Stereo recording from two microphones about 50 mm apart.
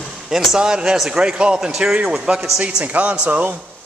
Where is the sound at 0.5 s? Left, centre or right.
Centre.